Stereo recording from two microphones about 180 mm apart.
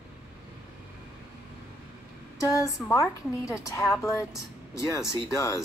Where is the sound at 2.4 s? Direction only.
20° left (ahead or behind).